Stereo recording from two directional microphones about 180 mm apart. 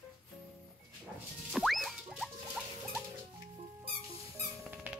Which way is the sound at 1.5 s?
Centre (ahead or behind).